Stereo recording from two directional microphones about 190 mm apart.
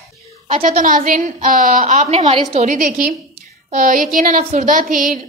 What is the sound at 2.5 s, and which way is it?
Speech, 40° right (ahead or behind).